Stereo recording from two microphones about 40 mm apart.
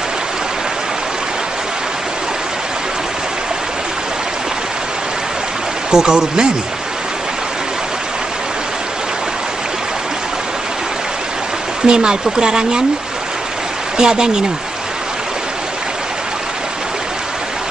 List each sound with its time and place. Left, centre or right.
5.9 s speech: centre
11.8 s speech: right
13.9 s speech: centre